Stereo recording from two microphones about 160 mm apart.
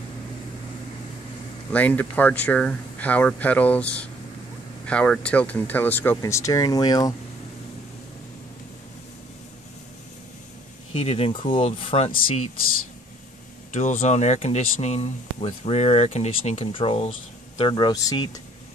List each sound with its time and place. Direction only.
1.7 s speech: 10° left (ahead or behind)
10.9 s speech: 40° left (ahead or behind)
13.7 s speech: 45° left (ahead or behind)
17.6 s speech: 30° left (ahead or behind)